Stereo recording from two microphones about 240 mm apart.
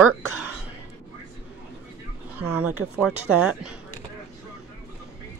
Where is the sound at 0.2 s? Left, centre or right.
Right.